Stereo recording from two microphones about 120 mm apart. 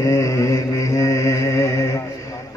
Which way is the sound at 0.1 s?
25° left (ahead or behind).